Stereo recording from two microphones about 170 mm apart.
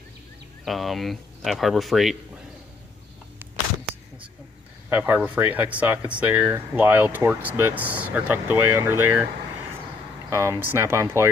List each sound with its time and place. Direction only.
0.7 s speech: centre (ahead or behind)
4.8 s speech: 15° right (ahead or behind)
10.3 s speech: 15° right (ahead or behind)